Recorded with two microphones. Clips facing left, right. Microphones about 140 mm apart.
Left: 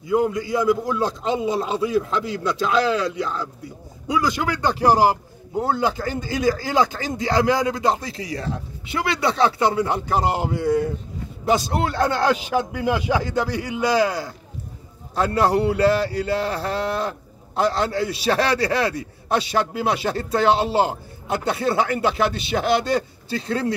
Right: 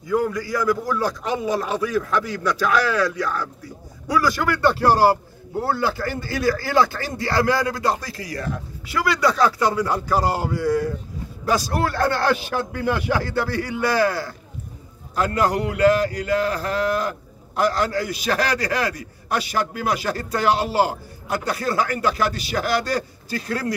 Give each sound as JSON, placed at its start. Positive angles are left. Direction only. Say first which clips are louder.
{"t": 0.0, "sound": "a man's voice", "louder": "left 2 dB", "side_deg": 20}
{"t": 15.1, "sound": "a man's voice", "louder": "left 2 dB", "side_deg": 30}